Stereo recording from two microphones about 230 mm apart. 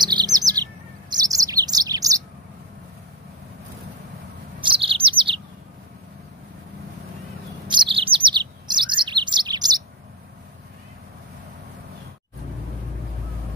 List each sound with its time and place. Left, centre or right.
0.0 s bird: centre
4.6 s chirp: right
7.6 s bird: centre